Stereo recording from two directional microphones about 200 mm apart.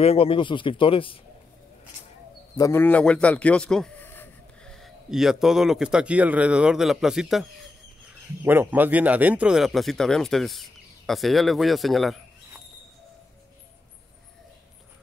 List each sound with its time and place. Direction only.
0.0 s speech: 30° left (ahead or behind)
2.5 s speech: 15° left (ahead or behind); by 7.4 s centre (ahead or behind)
8.5 s a man's voice: 10° right (ahead or behind)